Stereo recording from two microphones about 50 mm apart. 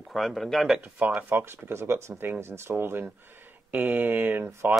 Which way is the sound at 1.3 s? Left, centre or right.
Right.